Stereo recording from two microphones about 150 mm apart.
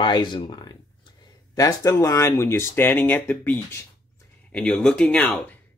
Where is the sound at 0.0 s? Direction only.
30° left (ahead or behind).